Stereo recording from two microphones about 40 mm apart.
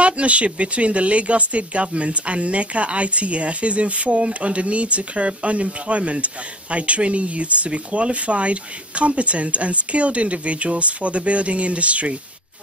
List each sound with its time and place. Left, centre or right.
0.0 s speech: right